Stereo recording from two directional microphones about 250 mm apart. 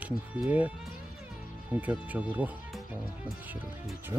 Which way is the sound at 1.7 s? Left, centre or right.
Centre.